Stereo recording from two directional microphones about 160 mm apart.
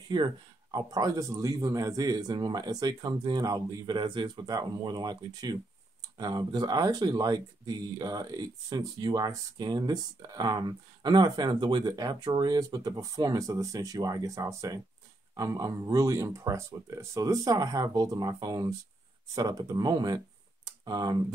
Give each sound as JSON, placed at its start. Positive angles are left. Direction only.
{"t": 0.1, "sound": "speech", "side_deg": -25}
{"t": 20.6, "sound": "computer keyboard", "side_deg": -25}